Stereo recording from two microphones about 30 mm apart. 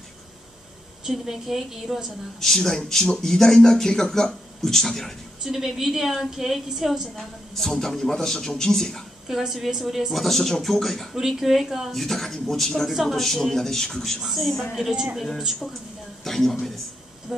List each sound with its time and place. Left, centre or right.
1.0 s a woman's voice: centre
2.4 s speech: centre
5.4 s a woman's voice: centre
7.2 s speech: centre
9.3 s a woman's voice: centre
10.1 s speech: centre
11.1 s a woman's voice: centre
11.9 s speech: centre
14.2 s speech: centre
16.3 s speech: centre
17.3 s a woman's voice: centre